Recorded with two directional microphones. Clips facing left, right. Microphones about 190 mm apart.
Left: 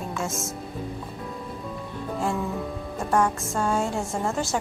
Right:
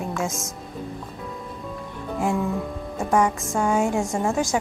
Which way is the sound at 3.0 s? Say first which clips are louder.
Right 3 dB; 5° right (ahead or behind).